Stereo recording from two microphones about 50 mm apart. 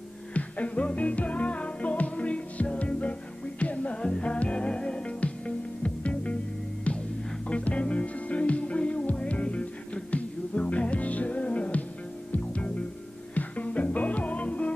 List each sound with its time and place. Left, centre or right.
0.3 s music: left
7.4 s music: left